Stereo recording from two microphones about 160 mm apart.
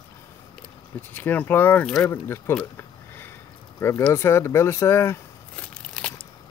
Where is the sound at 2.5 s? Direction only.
10° left (ahead or behind).